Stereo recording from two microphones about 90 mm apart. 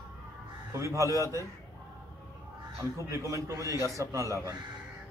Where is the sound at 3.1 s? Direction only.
35° right (ahead or behind).